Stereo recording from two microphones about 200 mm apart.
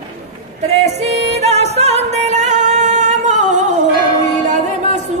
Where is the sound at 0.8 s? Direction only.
35° right (ahead or behind).